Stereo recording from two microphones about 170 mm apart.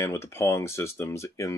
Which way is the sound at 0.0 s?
15° left (ahead or behind).